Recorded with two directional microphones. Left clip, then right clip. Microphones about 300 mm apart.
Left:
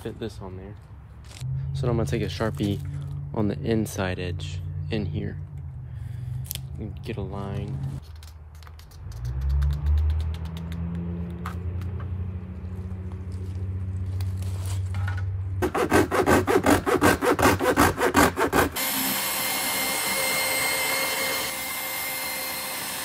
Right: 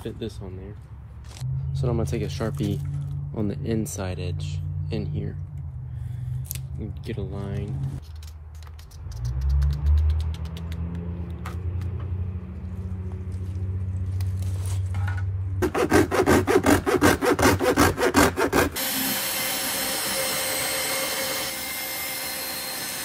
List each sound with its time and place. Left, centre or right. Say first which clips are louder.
0.0 s speech: even; left
1.8 s speech: left 1 dB; left
6.8 s speech: right 1 dB; left
9.2 s vehicle: right 1 dB; centre
15.6 s sawing: right 1 dB; centre
20.7 s a sound: left 2 dB; centre
22.2 s vacuum cleaner: left 1 dB; centre